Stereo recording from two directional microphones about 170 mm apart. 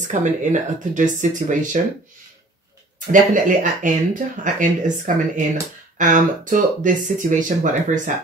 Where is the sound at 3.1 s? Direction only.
50° right (ahead or behind).